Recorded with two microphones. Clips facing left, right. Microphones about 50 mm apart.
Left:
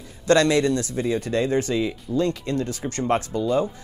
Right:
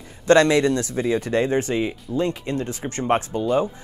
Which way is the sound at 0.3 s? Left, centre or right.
Right.